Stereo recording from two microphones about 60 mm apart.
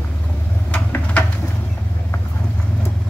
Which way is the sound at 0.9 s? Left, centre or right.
Left.